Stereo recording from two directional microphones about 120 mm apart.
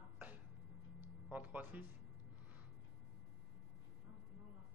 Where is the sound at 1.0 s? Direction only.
15° right (ahead or behind).